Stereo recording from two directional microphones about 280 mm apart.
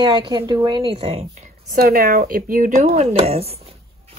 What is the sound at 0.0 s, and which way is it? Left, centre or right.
A woman's voice, centre.